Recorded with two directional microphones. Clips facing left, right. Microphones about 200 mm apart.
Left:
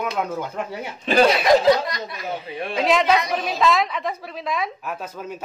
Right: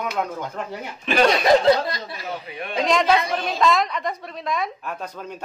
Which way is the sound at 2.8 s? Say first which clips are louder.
Even; centre (ahead or behind).